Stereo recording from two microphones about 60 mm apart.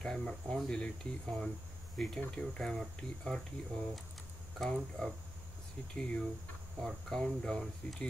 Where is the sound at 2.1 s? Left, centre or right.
Centre.